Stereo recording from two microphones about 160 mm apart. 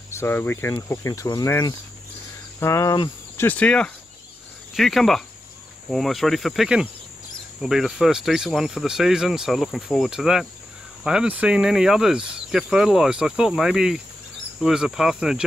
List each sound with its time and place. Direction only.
0.1 s speech: 15° left (ahead or behind); by 15.4 s 5° right (ahead or behind)